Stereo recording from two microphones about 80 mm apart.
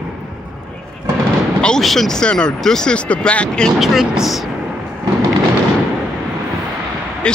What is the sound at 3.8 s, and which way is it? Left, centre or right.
Speech, centre.